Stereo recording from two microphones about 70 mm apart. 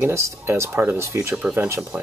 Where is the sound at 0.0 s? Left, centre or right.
Right.